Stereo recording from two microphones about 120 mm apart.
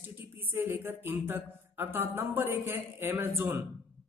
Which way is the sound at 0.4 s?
15° right (ahead or behind).